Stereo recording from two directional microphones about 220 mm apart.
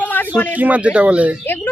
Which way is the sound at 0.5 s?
5° right (ahead or behind).